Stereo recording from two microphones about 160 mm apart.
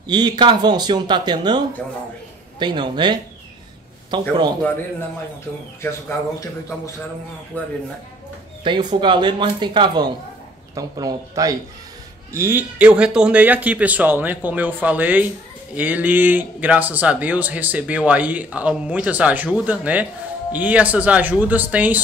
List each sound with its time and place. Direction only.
0.0 s speech: 25° right (ahead or behind)
2.6 s speech: 30° right (ahead or behind)
5.8 s speech: 15° left (ahead or behind)
7.5 s speech: 10° left (ahead or behind)
8.6 s speech: 30° right (ahead or behind); by 22.0 s 10° right (ahead or behind)